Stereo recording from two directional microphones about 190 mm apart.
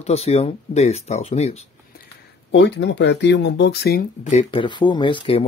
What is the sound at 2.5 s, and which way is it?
Speech, 65° left (ahead or behind).